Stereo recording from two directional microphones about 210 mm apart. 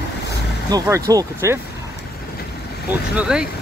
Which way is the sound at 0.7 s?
15° right (ahead or behind).